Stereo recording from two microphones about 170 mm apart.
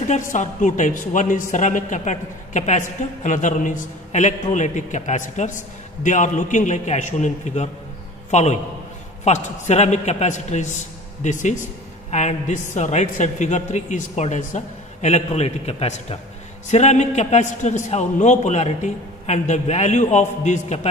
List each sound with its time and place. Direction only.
0.1 s a man's voice: 45° left (ahead or behind)